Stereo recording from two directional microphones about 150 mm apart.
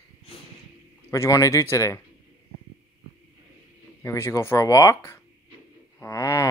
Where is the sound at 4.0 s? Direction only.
20° left (ahead or behind).